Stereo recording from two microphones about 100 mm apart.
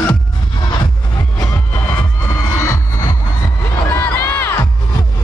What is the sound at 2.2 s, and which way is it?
Music, 30° left (ahead or behind).